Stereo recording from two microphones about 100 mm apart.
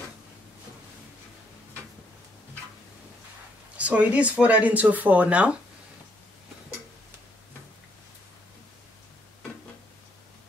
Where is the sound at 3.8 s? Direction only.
15° right (ahead or behind).